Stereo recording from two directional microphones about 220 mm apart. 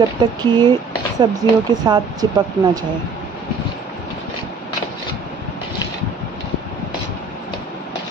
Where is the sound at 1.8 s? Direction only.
20° right (ahead or behind).